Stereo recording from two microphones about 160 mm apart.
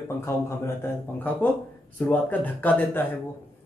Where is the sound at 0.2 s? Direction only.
15° left (ahead or behind).